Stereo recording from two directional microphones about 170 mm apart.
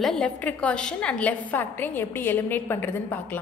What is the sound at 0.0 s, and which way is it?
A woman's voice, 5° left (ahead or behind).